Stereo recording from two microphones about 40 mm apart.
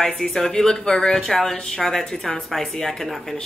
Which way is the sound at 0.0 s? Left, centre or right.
Centre.